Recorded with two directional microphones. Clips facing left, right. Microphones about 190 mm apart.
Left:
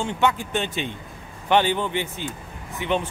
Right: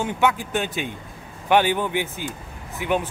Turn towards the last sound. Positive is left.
turn(degrees=-10)  # may be behind; listen again after turning